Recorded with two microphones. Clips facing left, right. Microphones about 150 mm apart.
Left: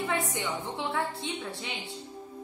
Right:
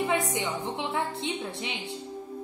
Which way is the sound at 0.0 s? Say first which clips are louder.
Right 3 dB; 15° right (ahead or behind).